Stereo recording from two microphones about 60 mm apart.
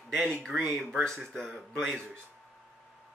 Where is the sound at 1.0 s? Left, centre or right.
Centre.